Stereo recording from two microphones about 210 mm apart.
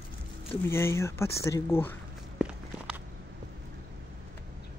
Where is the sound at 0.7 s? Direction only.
10° left (ahead or behind).